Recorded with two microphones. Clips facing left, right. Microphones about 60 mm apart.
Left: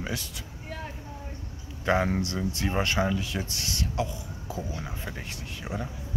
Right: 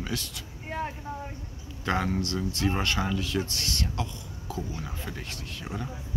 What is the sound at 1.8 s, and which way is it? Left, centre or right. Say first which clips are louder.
A man's voice: left 3 dB; centre.